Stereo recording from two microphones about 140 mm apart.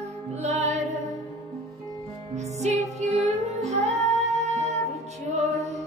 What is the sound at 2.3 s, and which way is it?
Music, 55° right (ahead or behind).